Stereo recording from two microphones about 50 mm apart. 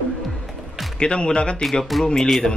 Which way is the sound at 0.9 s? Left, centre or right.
Centre.